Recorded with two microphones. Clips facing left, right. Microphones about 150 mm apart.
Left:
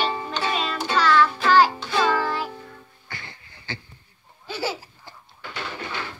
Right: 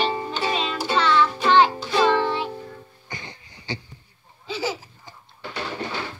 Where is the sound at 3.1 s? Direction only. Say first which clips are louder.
Right 3 dB; 15° right (ahead or behind).